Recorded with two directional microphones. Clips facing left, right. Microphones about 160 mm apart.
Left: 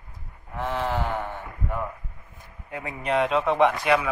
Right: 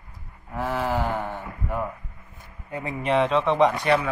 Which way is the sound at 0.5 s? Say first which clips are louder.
Right 2 dB; 5° right (ahead or behind).